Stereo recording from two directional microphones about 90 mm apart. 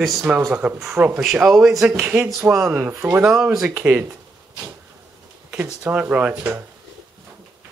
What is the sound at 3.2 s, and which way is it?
Speech, 10° right (ahead or behind).